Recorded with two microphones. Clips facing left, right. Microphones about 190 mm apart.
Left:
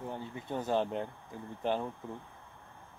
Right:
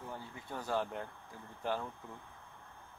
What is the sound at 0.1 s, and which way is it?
Speech, 20° left (ahead or behind).